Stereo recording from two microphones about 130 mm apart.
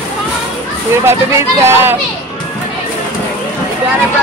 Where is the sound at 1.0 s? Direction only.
20° right (ahead or behind).